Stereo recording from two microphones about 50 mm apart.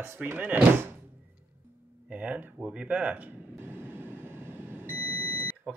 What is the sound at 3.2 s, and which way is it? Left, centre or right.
Smoke detector, right.